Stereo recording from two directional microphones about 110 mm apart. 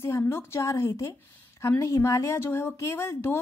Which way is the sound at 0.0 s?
25° left (ahead or behind).